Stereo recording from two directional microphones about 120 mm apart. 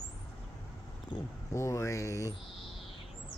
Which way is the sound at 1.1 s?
40° left (ahead or behind).